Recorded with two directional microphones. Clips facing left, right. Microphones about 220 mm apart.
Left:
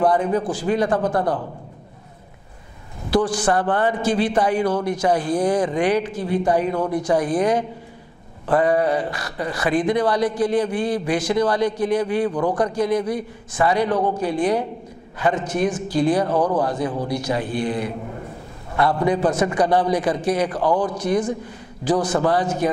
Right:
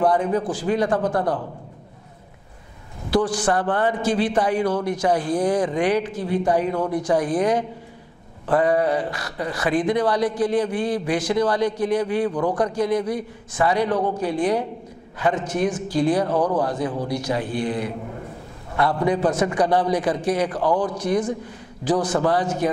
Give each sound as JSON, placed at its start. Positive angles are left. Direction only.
{"t": 0.0, "sound": "a man's voice", "side_deg": 15}
{"t": 3.1, "sound": "a man's voice", "side_deg": 10}